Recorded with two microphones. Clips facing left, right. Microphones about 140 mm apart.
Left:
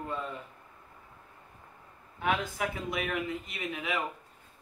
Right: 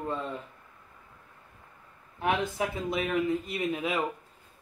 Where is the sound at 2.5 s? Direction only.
30° right (ahead or behind).